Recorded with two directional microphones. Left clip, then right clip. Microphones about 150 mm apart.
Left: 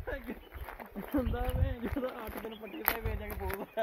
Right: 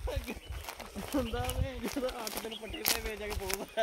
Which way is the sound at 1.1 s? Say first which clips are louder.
Even; 50° left (ahead or behind).